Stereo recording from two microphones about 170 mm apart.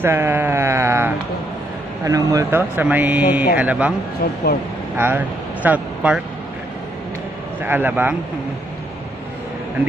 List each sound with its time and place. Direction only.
0.0 s a sound: 15° right (ahead or behind)
2.0 s speech: 20° right (ahead or behind)
4.2 s speech: 60° left (ahead or behind)
4.9 s speech: 10° right (ahead or behind)
7.6 s speech: 10° right (ahead or behind)